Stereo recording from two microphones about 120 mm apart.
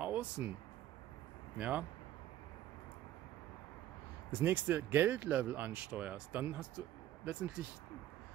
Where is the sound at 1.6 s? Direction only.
15° right (ahead or behind).